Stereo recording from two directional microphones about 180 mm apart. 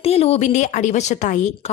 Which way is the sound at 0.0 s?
35° left (ahead or behind).